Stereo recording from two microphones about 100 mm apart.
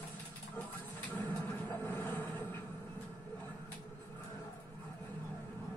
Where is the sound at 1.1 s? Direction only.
25° left (ahead or behind).